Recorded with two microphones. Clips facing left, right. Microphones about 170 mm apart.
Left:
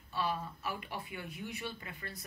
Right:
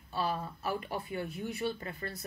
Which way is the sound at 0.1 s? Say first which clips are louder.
Right 2 dB; 35° right (ahead or behind).